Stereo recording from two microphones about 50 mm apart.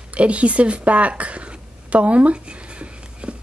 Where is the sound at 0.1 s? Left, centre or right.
Right.